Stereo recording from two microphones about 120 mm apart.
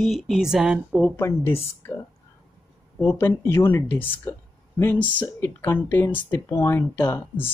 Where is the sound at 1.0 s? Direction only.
20° left (ahead or behind).